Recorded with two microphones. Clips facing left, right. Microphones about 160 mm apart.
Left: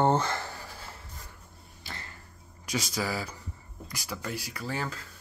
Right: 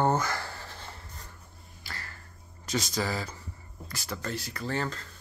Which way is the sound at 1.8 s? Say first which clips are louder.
Even; 20° left (ahead or behind).